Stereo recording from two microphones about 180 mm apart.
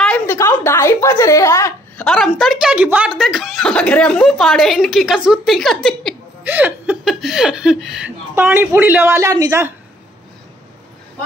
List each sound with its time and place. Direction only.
0.0 s a sound: 5° left (ahead or behind)
0.4 s a woman's voice: 15° left (ahead or behind)
2.0 s a woman's voice: centre (ahead or behind)
6.4 s speech: 10° right (ahead or behind)